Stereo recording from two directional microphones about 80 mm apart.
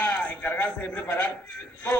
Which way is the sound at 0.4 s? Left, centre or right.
Left.